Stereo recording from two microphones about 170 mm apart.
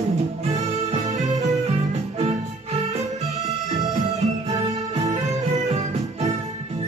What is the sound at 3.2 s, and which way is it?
Music, 40° right (ahead or behind).